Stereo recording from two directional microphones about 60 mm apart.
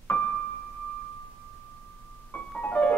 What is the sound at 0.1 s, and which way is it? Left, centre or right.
Music, left.